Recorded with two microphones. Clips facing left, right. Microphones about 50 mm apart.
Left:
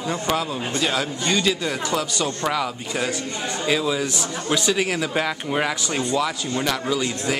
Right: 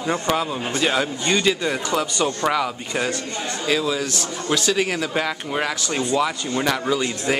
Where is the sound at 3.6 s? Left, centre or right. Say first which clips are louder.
Even; centre.